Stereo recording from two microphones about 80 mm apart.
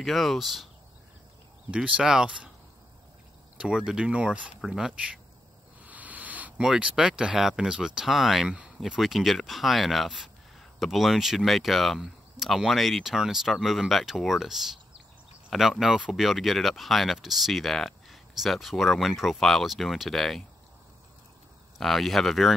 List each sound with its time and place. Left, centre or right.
0.0 s speech: centre
1.7 s speech: centre
3.5 s speech: centre
5.8 s a sound: centre
6.6 s speech: centre
21.7 s speech: centre